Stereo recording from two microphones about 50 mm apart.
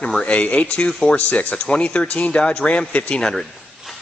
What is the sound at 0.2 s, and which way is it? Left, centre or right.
Speech, left.